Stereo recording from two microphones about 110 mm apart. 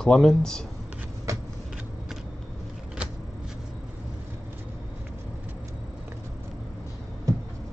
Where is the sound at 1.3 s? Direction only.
30° right (ahead or behind).